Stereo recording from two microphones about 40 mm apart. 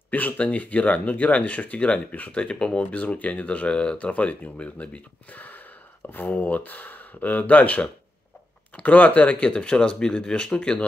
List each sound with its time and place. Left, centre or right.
0.1 s speech: left
2.3 s speech: left
2.8 s speech: left
4.1 s speech: left
5.3 s speech: left